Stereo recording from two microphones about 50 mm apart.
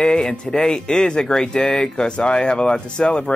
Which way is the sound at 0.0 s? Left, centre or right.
Centre.